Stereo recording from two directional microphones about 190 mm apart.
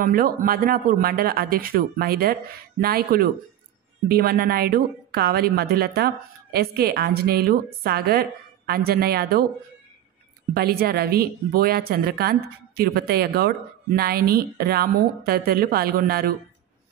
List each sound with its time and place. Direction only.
0.0 s a woman's voice: 50° right (ahead or behind)
10.5 s a woman's voice: 55° right (ahead or behind)